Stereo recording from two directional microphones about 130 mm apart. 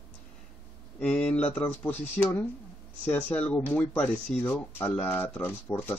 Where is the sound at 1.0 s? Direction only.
5° left (ahead or behind).